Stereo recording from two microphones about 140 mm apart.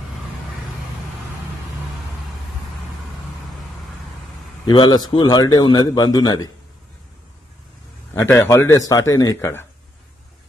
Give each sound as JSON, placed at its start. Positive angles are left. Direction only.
{"t": 4.6, "sound": "a man's voice", "side_deg": 30}
{"t": 8.1, "sound": "a man's voice", "side_deg": 15}